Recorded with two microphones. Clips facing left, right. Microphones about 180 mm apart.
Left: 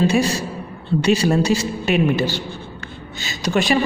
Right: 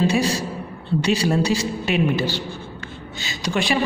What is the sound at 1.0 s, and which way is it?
A woman's voice, 45° left (ahead or behind).